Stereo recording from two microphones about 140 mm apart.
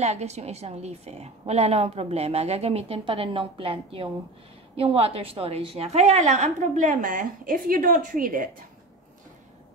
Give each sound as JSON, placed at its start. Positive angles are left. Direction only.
{"t": 0.0, "sound": "a woman's voice", "side_deg": -50}